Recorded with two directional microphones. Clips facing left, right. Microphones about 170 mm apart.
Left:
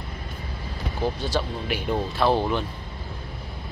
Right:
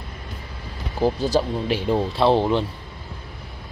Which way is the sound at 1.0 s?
40° right (ahead or behind).